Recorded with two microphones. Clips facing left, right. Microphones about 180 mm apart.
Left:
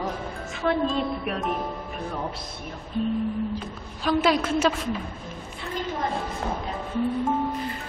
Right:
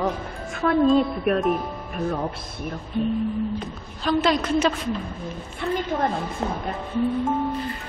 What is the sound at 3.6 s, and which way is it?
Speech, 5° left (ahead or behind).